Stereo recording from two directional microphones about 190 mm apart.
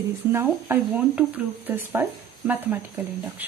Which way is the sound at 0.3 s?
10° right (ahead or behind).